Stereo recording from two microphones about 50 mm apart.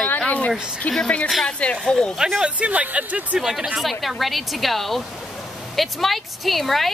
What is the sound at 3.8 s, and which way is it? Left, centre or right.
A woman's voice, centre.